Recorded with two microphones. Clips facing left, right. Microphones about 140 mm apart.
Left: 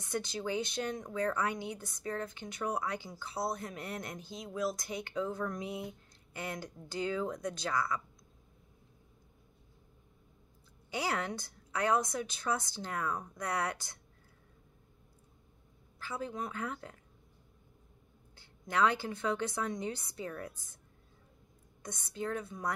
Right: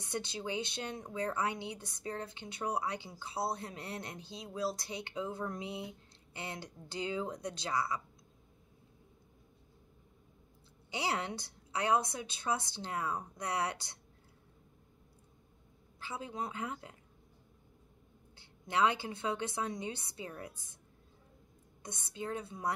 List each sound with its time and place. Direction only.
0.0 s speech: 25° right (ahead or behind)
10.9 s speech: 20° right (ahead or behind)
16.0 s speech: 20° right (ahead or behind)
18.4 s speech: 20° right (ahead or behind)
21.8 s speech: 25° right (ahead or behind)